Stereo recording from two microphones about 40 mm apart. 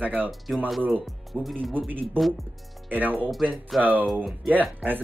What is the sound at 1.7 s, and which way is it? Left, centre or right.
A man's voice, right.